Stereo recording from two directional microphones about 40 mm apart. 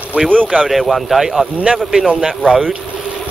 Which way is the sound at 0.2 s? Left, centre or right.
Right.